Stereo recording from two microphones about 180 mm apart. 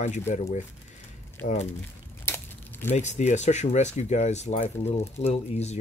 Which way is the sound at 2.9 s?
40° left (ahead or behind).